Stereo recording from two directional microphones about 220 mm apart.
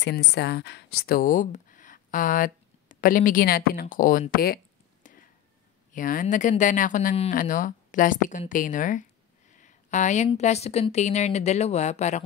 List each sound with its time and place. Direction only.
0.0 s speech: 50° left (ahead or behind)
5.9 s speech: 40° left (ahead or behind)